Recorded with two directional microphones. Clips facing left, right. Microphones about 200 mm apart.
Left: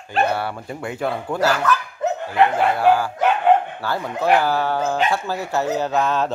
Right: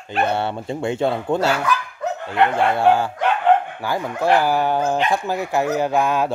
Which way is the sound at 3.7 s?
15° right (ahead or behind).